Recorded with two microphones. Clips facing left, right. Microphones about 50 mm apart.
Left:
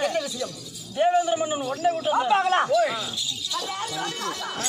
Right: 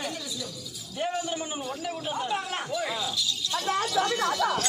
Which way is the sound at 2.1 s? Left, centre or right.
Left.